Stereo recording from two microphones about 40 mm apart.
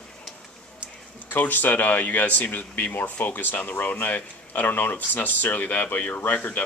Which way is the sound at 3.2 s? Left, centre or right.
Left.